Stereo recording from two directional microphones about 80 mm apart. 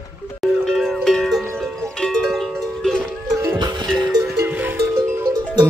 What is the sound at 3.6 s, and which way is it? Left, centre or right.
Music, right.